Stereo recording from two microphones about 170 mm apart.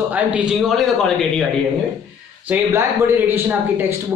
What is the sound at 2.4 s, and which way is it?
Speech, 10° right (ahead or behind).